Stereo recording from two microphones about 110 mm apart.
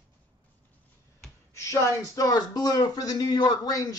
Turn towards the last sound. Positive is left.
turn(degrees=35)  # may be behind; listen again after turning